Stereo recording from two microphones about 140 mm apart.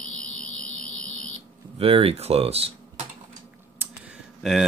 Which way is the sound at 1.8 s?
45° right (ahead or behind).